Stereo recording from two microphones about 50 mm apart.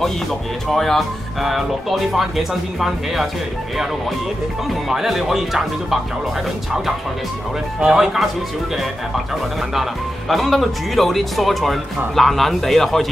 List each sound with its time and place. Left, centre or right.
0.0 s speech: centre
4.8 s speech: centre
7.8 s speech: centre
9.8 s speech: centre